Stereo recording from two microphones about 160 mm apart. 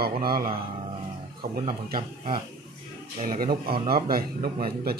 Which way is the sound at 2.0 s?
30° right (ahead or behind).